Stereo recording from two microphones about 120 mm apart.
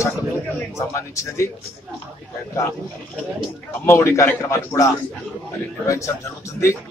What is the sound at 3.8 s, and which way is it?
A man's voice, 20° left (ahead or behind).